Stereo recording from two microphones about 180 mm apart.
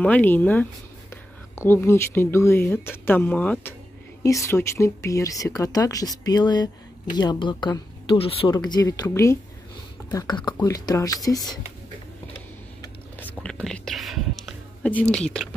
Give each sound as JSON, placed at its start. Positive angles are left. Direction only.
{"t": 0.0, "sound": "speech", "side_deg": 10}
{"t": 13.2, "sound": "whispering", "side_deg": 5}